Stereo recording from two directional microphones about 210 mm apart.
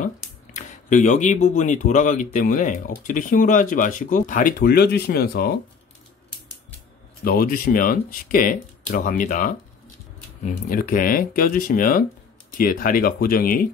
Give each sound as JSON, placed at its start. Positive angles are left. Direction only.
{"t": 0.0, "sound": "speech", "side_deg": 35}
{"t": 7.2, "sound": "speech", "side_deg": 45}